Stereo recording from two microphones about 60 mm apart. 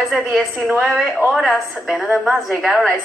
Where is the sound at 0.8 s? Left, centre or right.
Centre.